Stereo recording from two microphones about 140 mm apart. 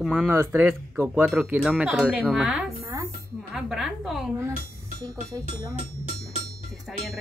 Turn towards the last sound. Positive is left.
turn(degrees=-5)  # may be behind; listen again after turning